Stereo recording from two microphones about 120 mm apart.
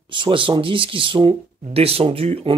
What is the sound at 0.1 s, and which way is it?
Speech, 45° right (ahead or behind).